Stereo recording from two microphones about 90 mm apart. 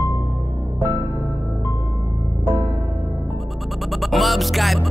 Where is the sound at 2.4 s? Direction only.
25° right (ahead or behind).